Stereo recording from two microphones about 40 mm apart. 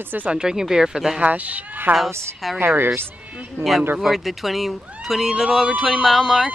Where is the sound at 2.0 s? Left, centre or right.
Centre.